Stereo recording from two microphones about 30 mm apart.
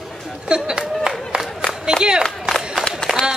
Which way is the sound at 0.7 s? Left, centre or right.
Right.